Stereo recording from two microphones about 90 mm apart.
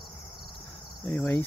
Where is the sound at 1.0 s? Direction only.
20° left (ahead or behind).